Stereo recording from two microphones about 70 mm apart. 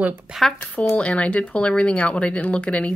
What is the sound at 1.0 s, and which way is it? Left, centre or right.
Speech, centre.